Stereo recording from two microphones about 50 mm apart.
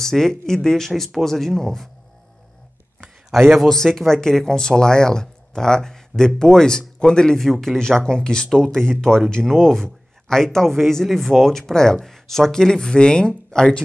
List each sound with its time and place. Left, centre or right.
0.0 s speech: centre
3.3 s a man's voice: centre